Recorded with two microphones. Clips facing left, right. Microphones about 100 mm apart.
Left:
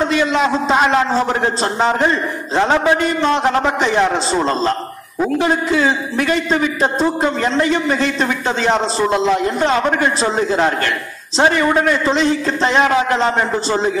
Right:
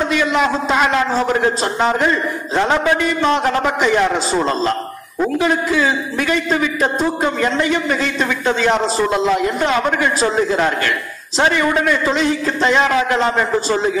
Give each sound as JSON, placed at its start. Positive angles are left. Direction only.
{"t": 0.2, "sound": "a man's voice", "side_deg": 25}
{"t": 2.5, "sound": "a man's voice", "side_deg": 20}